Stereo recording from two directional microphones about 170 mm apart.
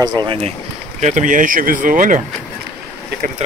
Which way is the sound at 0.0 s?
25° right (ahead or behind).